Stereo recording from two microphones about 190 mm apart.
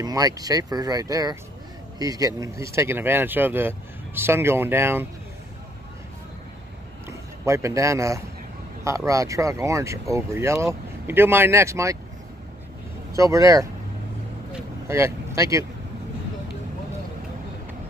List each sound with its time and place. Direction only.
0.0 s speech: 20° right (ahead or behind)
7.1 s a man's voice: 15° right (ahead or behind)
13.1 s speech: 15° right (ahead or behind)
14.9 s speech: 15° right (ahead or behind)